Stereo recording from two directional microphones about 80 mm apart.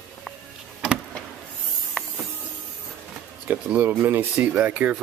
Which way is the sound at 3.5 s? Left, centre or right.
Right.